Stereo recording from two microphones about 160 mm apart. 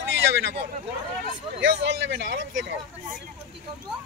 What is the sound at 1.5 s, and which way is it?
A man's voice, 90° right.